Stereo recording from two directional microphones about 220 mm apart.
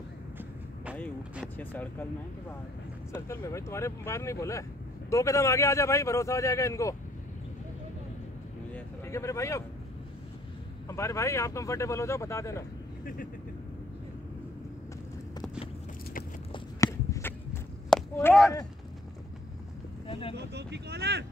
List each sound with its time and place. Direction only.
1.6 s a man's voice: 10° left (ahead or behind)
3.1 s a man's voice: 15° left (ahead or behind)
8.7 s a sound: 10° left (ahead or behind)
10.9 s a man's voice: 15° left (ahead or behind)
16.5 s walk: 15° left (ahead or behind)
20.1 s speech: 25° left (ahead or behind)
20.3 s speech: 50° right (ahead or behind)